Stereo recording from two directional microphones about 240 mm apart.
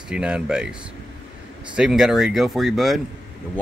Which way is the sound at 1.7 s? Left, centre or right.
Centre.